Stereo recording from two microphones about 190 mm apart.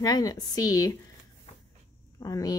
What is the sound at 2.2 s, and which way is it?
Speech, 20° left (ahead or behind).